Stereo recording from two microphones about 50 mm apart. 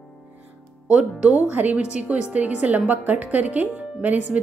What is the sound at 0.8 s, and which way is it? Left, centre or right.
Speech, right.